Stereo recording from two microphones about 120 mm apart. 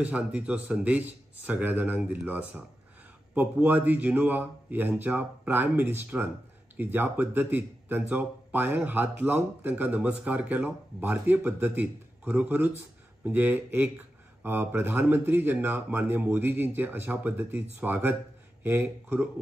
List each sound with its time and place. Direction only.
0.0 s speech: 10° right (ahead or behind)